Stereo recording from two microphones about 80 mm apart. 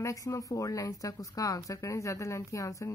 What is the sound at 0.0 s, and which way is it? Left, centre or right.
Speech, left.